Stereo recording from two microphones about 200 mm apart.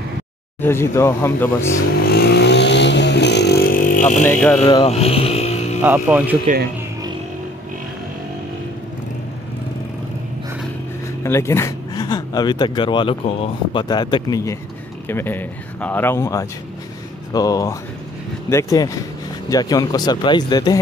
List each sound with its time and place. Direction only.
0.6 s speech: 10° left (ahead or behind)
2.1 s vehicle: 55° left (ahead or behind)
4.3 s speech: 5° left (ahead or behind)
4.6 s speech: 25° left (ahead or behind)
5.8 s speech: 10° right (ahead or behind)
6.4 s speech: 45° right (ahead or behind)
11.2 s speech: 15° left (ahead or behind)